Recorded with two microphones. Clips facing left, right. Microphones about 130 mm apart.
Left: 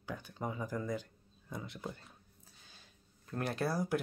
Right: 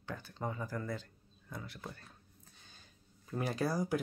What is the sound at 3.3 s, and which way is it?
Speech, centre (ahead or behind).